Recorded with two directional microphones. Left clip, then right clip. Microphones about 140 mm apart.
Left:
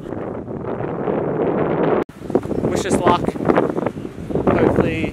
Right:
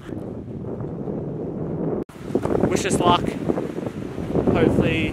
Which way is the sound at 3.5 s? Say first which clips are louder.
Left 12 dB; 30° left (ahead or behind).